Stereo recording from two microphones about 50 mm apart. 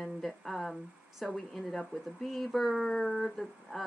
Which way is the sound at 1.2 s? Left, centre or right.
Centre.